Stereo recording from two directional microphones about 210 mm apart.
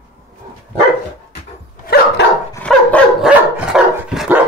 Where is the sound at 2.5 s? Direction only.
5° left (ahead or behind).